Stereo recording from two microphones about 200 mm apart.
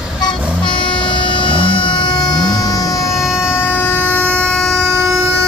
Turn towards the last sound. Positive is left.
turn(degrees=0)  # may be behind; listen again after turning